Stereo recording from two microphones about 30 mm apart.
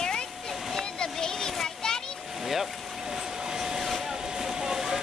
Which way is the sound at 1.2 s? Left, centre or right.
Centre.